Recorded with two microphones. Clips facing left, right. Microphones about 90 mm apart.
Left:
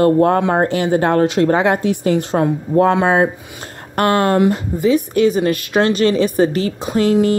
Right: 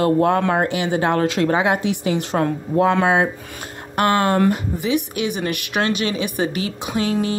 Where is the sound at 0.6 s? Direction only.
45° left (ahead or behind).